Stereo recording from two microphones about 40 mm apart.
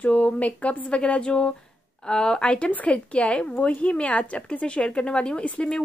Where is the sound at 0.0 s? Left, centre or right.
Left.